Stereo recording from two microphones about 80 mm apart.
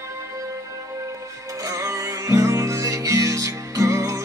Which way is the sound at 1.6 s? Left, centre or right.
Right.